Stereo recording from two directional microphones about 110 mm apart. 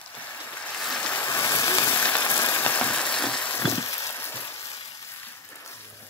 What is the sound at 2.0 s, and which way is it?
Ratchet, 15° left (ahead or behind).